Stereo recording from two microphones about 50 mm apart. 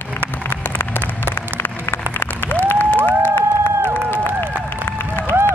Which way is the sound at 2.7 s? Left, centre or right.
Left.